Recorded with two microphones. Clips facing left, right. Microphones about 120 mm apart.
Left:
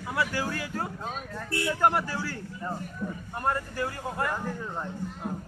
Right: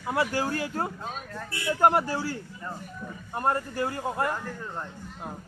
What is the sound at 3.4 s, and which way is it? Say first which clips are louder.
Speech: right 3 dB; 30° right (ahead or behind).